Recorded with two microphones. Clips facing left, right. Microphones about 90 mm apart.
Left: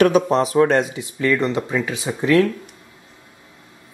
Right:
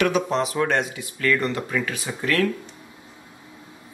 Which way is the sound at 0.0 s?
40° left (ahead or behind).